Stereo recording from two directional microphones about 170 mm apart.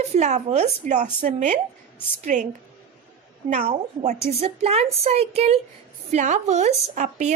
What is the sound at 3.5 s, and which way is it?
A woman's voice, 45° right (ahead or behind).